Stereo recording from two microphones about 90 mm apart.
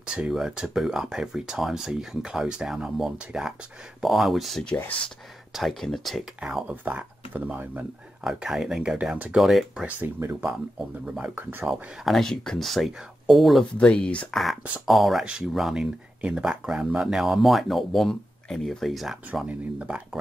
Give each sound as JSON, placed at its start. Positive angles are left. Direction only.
{"t": 0.0, "sound": "speech", "side_deg": -10}
{"t": 6.4, "sound": "speech", "side_deg": -10}
{"t": 8.2, "sound": "speech", "side_deg": -5}
{"t": 9.8, "sound": "speech", "side_deg": -20}
{"t": 11.1, "sound": "speech", "side_deg": -20}
{"t": 11.6, "sound": "speech", "side_deg": 0}
{"t": 13.7, "sound": "speech", "side_deg": 10}
{"t": 14.3, "sound": "speech", "side_deg": 0}
{"t": 19.4, "sound": "speech", "side_deg": -15}